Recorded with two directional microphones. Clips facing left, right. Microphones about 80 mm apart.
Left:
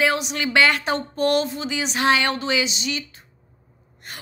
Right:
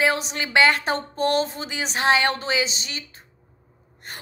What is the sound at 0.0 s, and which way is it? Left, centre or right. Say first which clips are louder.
A woman's voice: left 1 dB; right.